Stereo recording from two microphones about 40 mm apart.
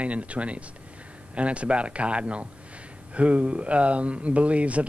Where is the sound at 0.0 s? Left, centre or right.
Right.